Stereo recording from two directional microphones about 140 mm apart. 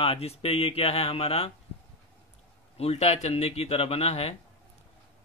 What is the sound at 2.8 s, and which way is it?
Speech, 50° left (ahead or behind).